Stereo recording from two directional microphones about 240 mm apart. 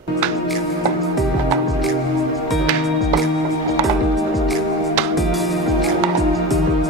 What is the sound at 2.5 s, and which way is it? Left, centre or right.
Music, centre.